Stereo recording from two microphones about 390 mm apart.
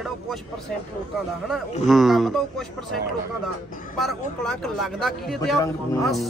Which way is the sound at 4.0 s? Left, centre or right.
Centre.